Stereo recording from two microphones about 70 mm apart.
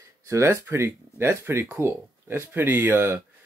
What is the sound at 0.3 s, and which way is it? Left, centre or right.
Speech, right.